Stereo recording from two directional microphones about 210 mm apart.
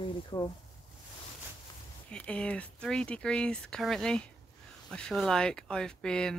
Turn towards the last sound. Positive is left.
turn(degrees=5)  # may be behind; listen again after turning